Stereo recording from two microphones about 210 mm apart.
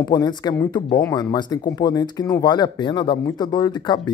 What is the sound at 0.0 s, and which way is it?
Speech, 20° left (ahead or behind).